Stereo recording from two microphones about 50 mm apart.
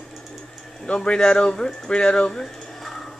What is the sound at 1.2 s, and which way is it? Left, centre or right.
Speech, centre.